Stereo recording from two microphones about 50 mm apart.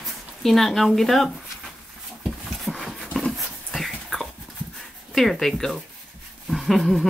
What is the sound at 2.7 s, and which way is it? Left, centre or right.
Dog, centre.